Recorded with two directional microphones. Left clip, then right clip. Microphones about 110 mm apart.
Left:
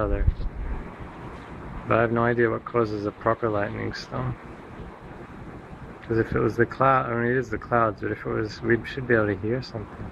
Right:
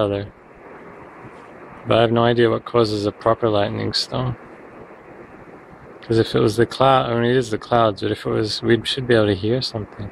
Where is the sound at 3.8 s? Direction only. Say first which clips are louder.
Right 9 dB; 20° right (ahead or behind).